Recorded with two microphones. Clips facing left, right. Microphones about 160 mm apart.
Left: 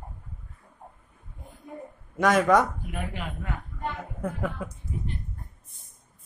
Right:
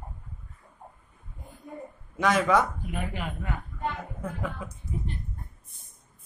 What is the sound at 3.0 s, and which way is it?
Speech, centre (ahead or behind).